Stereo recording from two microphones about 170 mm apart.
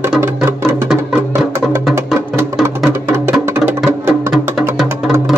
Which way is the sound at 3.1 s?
15° right (ahead or behind).